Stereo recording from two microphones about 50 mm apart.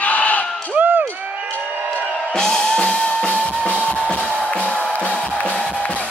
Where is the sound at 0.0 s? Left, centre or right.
Left.